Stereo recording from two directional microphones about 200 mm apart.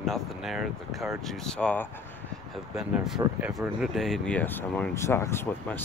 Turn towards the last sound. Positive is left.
turn(degrees=10)  # may be behind; listen again after turning